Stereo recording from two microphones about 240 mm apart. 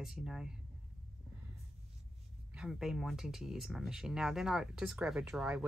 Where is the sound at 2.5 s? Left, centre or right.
Centre.